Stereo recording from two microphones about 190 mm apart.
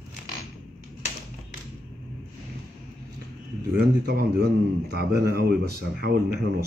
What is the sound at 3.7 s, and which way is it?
Speech, 55° right (ahead or behind).